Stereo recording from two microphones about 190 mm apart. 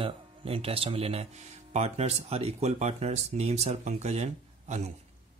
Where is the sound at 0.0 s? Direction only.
30° right (ahead or behind).